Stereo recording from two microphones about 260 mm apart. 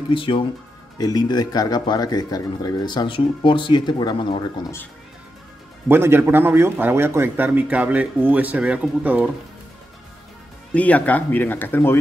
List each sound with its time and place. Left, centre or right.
0.1 s speech: centre
5.9 s a man's voice: centre
10.7 s speech: centre